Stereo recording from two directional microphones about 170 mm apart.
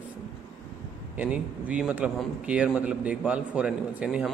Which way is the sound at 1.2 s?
10° right (ahead or behind).